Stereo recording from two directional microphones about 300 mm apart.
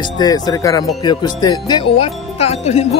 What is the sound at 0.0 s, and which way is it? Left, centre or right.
Music, centre.